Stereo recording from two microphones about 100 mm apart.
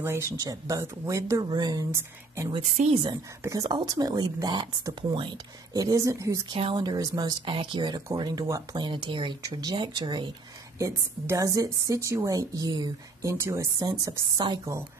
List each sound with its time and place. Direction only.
0.0 s a woman's voice: 25° right (ahead or behind); by 1.9 s 40° right (ahead or behind)
2.5 s speech: 55° right (ahead or behind)
5.7 s a woman's voice: 35° right (ahead or behind)
6.5 s speech: 65° right (ahead or behind)
6.8 s speech: 45° right (ahead or behind)
10.8 s a woman's voice: 30° right (ahead or behind); by 14.7 s 45° right (ahead or behind)